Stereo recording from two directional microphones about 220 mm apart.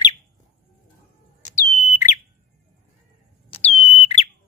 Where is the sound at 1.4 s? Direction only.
35° left (ahead or behind).